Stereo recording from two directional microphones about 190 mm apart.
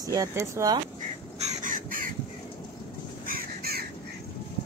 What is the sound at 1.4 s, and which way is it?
Crow, 45° right (ahead or behind).